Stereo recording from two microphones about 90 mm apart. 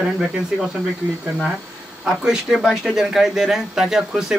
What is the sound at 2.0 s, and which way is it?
Speech, 5° right (ahead or behind).